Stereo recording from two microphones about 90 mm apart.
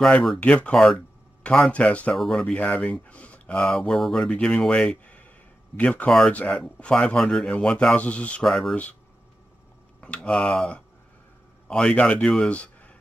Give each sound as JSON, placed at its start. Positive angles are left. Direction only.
{"t": 0.0, "sound": "speech", "side_deg": 5}
{"t": 0.4, "sound": "speech", "side_deg": 15}
{"t": 2.1, "sound": "speech", "side_deg": 5}
{"t": 3.6, "sound": "speech", "side_deg": 5}
{"t": 9.9, "sound": "speech", "side_deg": 10}
{"t": 12.4, "sound": "a sound", "side_deg": 15}